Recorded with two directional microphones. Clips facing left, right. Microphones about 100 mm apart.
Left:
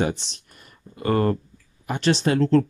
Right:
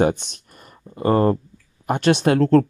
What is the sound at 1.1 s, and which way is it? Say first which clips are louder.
Speech: right 4 dB; 30° right (ahead or behind).